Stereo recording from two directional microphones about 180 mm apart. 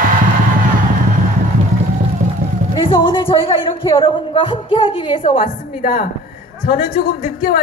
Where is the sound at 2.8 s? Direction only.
30° left (ahead or behind).